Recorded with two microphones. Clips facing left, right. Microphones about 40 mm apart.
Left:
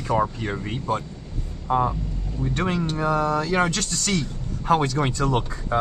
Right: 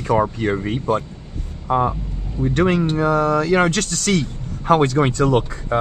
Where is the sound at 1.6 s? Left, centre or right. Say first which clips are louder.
Right 3 dB; right.